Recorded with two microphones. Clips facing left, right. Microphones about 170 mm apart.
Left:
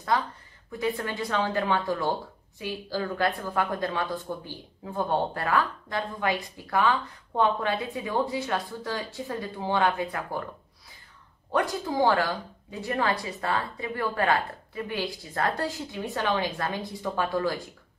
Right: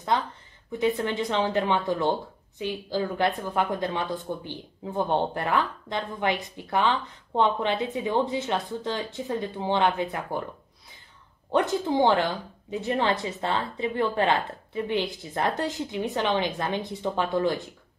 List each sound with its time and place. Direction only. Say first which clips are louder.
0.7 s speech: right 4 dB; 20° right (ahead or behind)
11.5 s speech: right 3 dB; 25° right (ahead or behind)